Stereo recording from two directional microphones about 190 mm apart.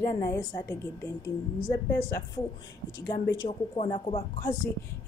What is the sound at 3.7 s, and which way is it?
Speech, 30° left (ahead or behind).